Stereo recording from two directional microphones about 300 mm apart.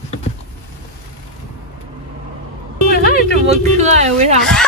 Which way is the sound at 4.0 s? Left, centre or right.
Right.